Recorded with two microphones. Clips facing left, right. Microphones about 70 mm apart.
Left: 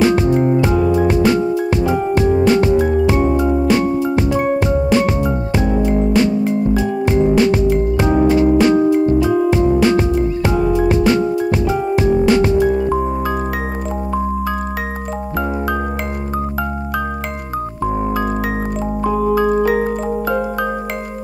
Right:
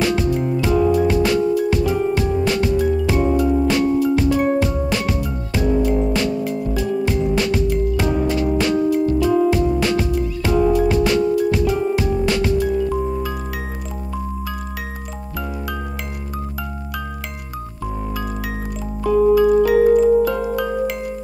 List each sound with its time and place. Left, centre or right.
0.1 s music: left
19.3 s music: left